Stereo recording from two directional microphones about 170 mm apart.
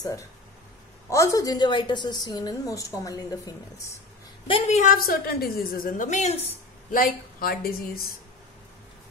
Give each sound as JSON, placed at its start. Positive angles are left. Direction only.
{"t": 1.1, "sound": "a woman's voice", "side_deg": 20}
{"t": 4.5, "sound": "a woman's voice", "side_deg": 35}
{"t": 4.9, "sound": "a woman's voice", "side_deg": 60}
{"t": 6.9, "sound": "a woman's voice", "side_deg": 55}